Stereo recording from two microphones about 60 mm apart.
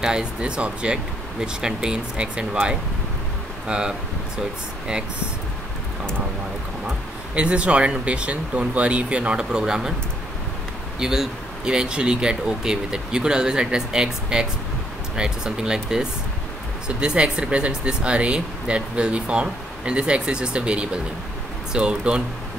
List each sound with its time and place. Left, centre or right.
0.0 s speech: centre
3.6 s speech: centre
7.3 s speech: centre
11.0 s speech: centre